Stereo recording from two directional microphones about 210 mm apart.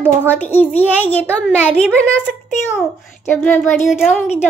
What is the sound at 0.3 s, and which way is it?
Speech, 10° left (ahead or behind).